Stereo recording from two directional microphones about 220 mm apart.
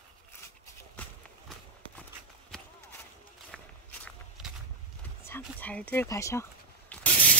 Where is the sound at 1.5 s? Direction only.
Centre (ahead or behind).